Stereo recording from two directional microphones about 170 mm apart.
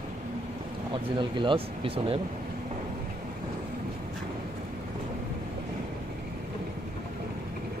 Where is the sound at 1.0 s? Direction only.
30° right (ahead or behind).